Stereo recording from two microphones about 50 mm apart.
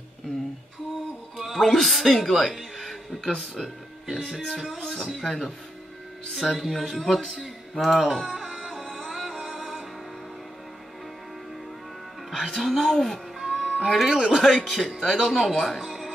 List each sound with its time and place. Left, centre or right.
1.4 s speech: centre
2.5 s a sound: centre
4.5 s speech: centre
7.7 s music: centre
12.3 s speech: centre
13.4 s music: centre
14.3 s speech: centre